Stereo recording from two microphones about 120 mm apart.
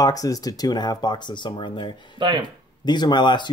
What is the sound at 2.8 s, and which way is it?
Speech, 40° left (ahead or behind).